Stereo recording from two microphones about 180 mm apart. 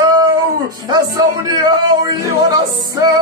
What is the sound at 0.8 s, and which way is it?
Music, 25° right (ahead or behind).